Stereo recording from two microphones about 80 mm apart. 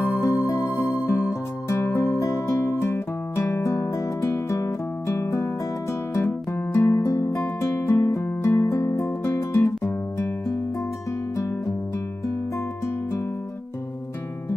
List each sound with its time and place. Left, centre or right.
0.2 s music: left
2.7 s guitar: left
3.9 s music: left
7.1 s music: left
7.3 s music: left